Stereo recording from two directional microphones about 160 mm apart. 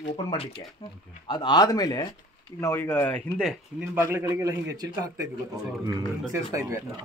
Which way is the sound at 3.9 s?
15° right (ahead or behind).